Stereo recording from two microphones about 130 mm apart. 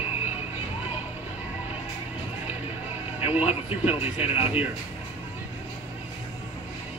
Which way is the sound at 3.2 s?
15° right (ahead or behind).